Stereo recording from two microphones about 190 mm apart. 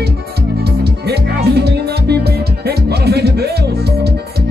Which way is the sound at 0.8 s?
60° right (ahead or behind).